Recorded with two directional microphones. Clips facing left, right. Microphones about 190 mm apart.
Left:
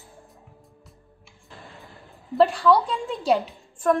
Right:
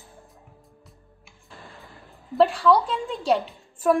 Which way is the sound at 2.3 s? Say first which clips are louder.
Even; centre (ahead or behind).